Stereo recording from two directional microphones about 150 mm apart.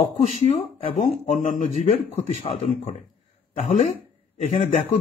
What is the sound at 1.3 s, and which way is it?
Speech, 50° left (ahead or behind).